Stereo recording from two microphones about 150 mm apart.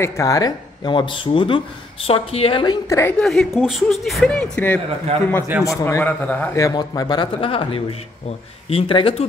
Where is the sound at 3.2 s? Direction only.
Centre (ahead or behind).